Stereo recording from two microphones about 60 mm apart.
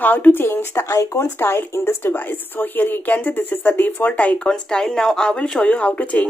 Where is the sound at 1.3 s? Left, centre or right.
Left.